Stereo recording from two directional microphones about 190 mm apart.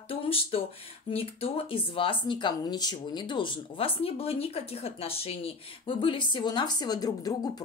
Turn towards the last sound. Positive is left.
turn(degrees=20)  # may be behind; listen again after turning